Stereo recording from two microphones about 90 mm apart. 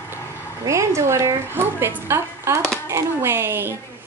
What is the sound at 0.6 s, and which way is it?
A woman's voice, 35° right (ahead or behind).